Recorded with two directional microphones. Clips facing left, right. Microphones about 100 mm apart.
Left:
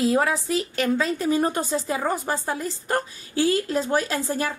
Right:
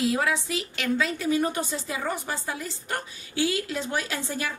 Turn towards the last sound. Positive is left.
turn(degrees=40)  # may be behind; listen again after turning